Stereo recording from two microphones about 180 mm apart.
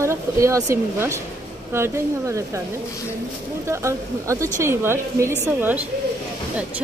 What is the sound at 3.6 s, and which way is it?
A woman's voice, 15° right (ahead or behind).